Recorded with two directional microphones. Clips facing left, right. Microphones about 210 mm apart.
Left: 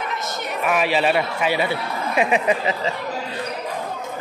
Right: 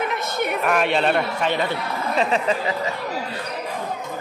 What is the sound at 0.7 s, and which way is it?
A man's voice, 5° left (ahead or behind).